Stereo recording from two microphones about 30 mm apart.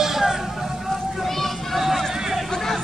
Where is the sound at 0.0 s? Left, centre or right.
Centre.